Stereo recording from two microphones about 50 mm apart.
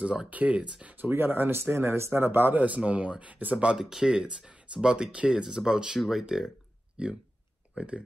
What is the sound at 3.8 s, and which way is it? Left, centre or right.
Speech, centre.